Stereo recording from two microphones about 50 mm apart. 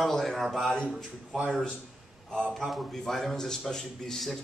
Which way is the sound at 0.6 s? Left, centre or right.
Centre.